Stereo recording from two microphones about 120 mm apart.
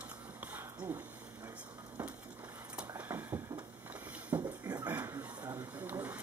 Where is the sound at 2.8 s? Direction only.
20° right (ahead or behind).